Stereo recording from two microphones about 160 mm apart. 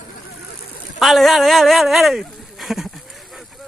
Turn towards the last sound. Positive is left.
turn(degrees=0)  # may be behind; listen again after turning